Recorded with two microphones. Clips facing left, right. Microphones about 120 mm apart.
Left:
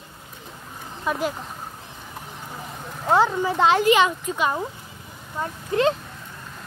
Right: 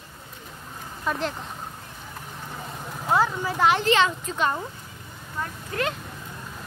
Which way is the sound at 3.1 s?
25° left (ahead or behind).